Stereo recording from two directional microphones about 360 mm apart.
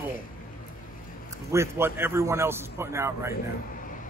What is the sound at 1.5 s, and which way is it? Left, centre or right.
A man's voice, centre.